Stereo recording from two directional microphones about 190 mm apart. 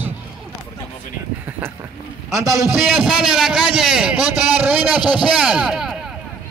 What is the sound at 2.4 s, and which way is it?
Speech, 15° right (ahead or behind).